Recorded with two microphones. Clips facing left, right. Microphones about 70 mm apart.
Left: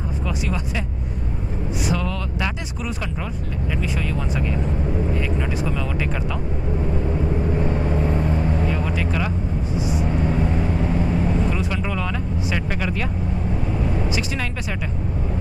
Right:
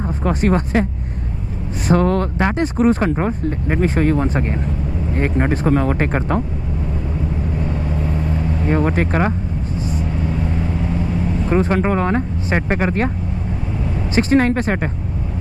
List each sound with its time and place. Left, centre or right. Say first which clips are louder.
0.2 s speech: right 11 dB; right
1.9 s speech: right 13 dB; right
8.6 s speech: right 6 dB; right
11.5 s speech: right 9 dB; right
14.1 s speech: right 12 dB; right